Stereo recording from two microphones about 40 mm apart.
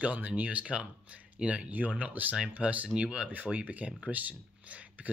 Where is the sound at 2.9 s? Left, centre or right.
Right.